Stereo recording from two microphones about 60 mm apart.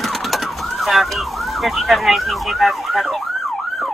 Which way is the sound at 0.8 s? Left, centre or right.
Centre.